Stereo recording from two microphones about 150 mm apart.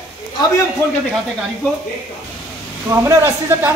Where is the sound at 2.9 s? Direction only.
15° right (ahead or behind).